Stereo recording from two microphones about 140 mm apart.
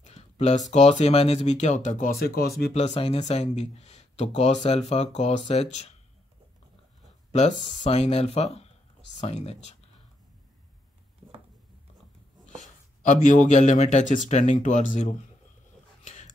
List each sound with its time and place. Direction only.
0.0 s a sound: 50° left (ahead or behind)
0.7 s speech: 55° left (ahead or behind); by 2.7 s 90° left
2.7 s speech: 50° left (ahead or behind)
7.2 s speech: 55° left (ahead or behind)
13.0 s speech: 65° left (ahead or behind)
16.0 s dog: 60° left (ahead or behind)